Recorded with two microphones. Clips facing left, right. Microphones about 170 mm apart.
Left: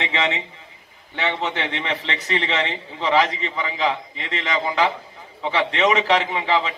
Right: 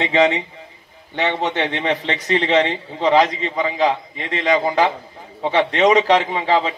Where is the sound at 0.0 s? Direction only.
35° right (ahead or behind).